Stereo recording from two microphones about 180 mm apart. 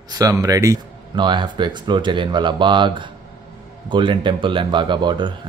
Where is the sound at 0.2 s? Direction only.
20° right (ahead or behind).